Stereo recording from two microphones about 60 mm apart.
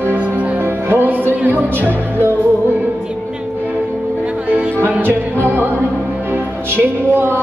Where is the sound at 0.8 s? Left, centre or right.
Right.